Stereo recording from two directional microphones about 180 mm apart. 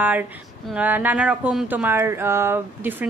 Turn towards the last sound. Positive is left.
turn(degrees=-10)  # may be behind; listen again after turning